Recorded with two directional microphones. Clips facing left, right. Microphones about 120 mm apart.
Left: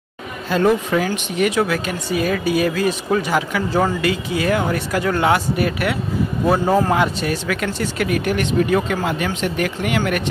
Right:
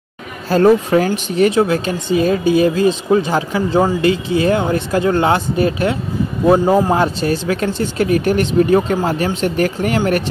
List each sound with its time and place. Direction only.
0.5 s a man's voice: 40° right (ahead or behind); by 6.9 s 15° right (ahead or behind)
6.9 s speech: 30° right (ahead or behind)